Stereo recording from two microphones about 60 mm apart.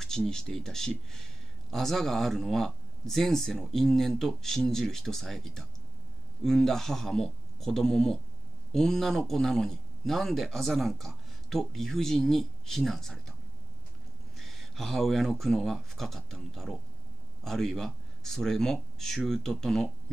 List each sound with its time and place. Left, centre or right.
0.3 s speech: centre
14.3 s speech: centre